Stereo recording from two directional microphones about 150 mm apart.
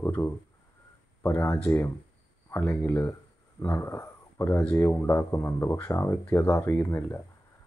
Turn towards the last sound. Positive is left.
turn(degrees=15)  # may be behind; listen again after turning